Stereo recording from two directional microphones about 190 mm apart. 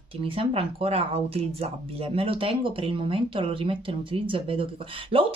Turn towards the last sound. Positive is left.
turn(degrees=-30)  # may be behind; listen again after turning